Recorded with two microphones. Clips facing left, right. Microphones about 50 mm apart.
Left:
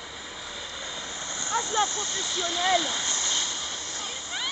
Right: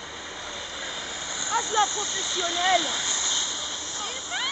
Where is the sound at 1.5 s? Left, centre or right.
Centre.